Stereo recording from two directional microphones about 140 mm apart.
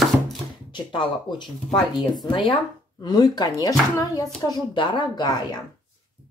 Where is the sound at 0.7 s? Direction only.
35° left (ahead or behind).